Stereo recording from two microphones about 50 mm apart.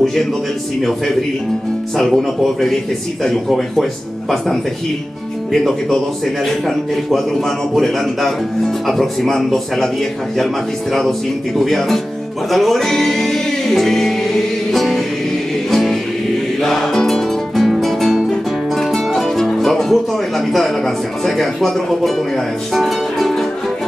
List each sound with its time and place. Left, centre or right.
2.0 s a man's voice: centre
5.5 s a man's voice: centre
12.4 s music: centre
18.8 s speech: centre
22.8 s music: centre